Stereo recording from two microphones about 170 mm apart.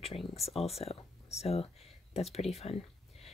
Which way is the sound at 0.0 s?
35° left (ahead or behind).